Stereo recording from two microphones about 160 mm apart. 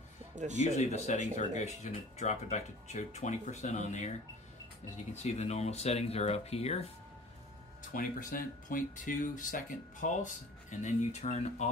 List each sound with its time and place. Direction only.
0.6 s speech: 45° left (ahead or behind)
7.9 s speech: 60° left (ahead or behind)